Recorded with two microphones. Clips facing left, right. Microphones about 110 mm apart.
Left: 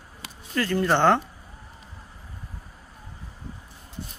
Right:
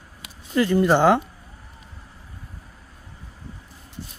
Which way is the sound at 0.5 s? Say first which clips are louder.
Right 5 dB; 15° right (ahead or behind).